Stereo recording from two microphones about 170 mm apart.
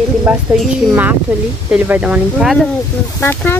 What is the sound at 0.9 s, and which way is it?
Speech, 10° right (ahead or behind).